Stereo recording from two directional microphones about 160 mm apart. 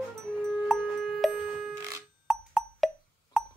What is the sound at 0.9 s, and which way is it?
Music, centre (ahead or behind).